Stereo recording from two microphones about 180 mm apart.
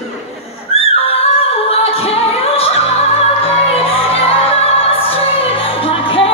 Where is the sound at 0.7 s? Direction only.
35° left (ahead or behind).